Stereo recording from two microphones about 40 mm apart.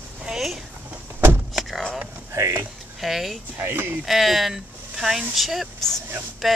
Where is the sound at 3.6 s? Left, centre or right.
Right.